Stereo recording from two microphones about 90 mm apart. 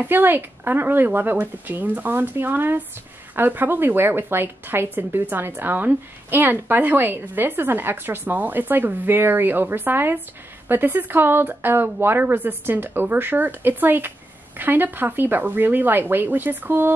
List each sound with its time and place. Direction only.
0.0 s speech: 20° right (ahead or behind)